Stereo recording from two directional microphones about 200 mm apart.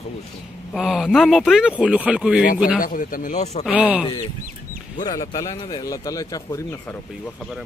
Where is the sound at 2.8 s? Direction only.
45° left (ahead or behind).